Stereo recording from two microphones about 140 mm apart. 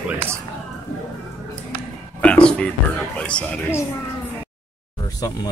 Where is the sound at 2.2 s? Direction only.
10° left (ahead or behind).